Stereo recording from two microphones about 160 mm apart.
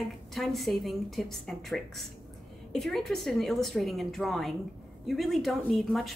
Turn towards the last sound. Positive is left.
turn(degrees=0)  # may be behind; listen again after turning